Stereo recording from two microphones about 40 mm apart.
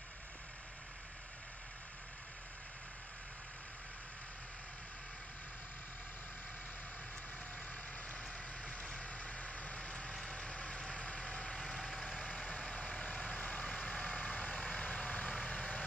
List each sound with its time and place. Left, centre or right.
9.0 s vehicle: left
11.6 s vehicle: centre
12.2 s vehicle: left